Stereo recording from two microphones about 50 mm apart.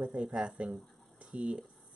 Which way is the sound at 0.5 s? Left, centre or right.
Right.